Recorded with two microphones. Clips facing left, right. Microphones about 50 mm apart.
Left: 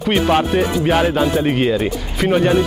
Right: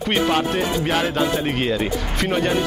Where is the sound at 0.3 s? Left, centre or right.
Centre.